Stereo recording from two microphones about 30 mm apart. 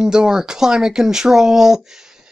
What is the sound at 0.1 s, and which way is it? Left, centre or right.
Speech, right.